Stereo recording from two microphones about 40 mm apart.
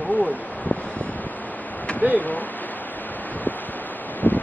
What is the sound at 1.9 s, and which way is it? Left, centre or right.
Speech, left.